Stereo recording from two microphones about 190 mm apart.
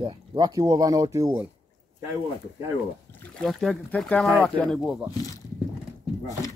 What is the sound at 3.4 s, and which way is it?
Speech, centre (ahead or behind).